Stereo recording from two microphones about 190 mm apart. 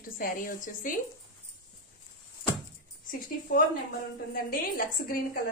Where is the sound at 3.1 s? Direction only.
45° left (ahead or behind).